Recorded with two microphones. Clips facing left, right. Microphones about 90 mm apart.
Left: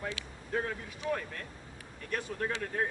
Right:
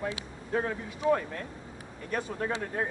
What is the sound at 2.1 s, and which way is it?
Speech, 25° right (ahead or behind).